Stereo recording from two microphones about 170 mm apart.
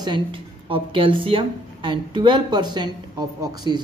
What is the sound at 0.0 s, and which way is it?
Speech, 30° right (ahead or behind).